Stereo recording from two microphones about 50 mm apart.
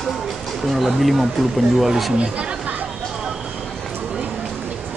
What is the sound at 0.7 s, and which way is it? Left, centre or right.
Speech, centre.